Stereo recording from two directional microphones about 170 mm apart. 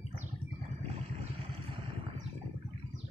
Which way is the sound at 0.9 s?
35° right (ahead or behind).